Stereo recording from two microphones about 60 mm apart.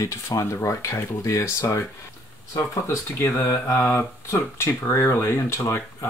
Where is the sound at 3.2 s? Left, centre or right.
Left.